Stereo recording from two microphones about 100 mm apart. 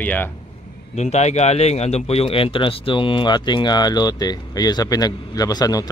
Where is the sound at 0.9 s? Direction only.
90° left; by 5.9 s 40° left (ahead or behind).